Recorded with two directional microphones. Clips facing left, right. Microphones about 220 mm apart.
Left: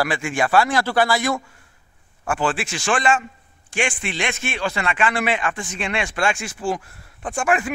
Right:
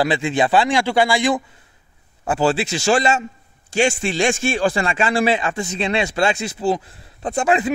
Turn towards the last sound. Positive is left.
turn(degrees=-20)  # may be behind; listen again after turning